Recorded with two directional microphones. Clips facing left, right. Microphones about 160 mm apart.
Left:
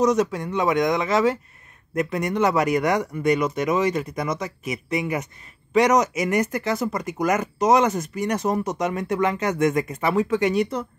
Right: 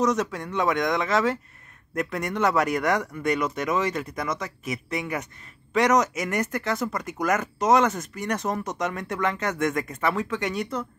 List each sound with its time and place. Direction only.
0.0 s speech: 10° left (ahead or behind)